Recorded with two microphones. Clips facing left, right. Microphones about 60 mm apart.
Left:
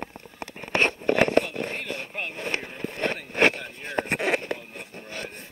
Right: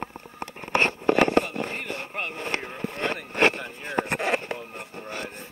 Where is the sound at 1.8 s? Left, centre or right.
Right.